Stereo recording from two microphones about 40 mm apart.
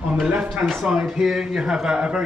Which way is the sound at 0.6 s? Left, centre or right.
Centre.